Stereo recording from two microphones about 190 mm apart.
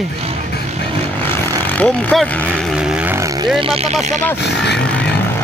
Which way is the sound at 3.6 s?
30° right (ahead or behind).